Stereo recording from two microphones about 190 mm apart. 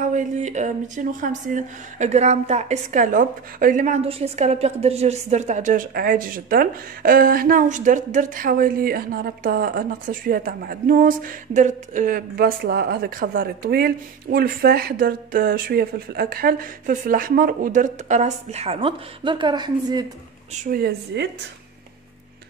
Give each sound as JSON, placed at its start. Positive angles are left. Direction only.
{"t": 0.0, "sound": "a woman's voice", "side_deg": -40}
{"t": 20.6, "sound": "a woman's voice", "side_deg": -55}